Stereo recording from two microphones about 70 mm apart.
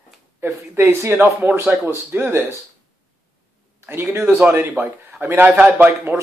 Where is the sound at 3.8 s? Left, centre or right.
Right.